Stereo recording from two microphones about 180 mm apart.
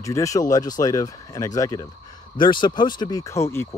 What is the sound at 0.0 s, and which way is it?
Speech, 15° left (ahead or behind).